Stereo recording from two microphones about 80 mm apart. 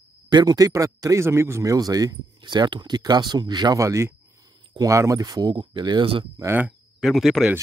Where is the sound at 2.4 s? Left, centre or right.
Right.